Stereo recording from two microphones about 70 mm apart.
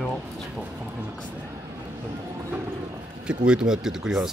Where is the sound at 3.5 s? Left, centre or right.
Centre.